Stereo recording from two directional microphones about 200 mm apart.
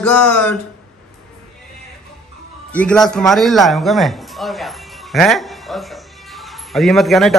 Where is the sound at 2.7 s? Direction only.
5° left (ahead or behind).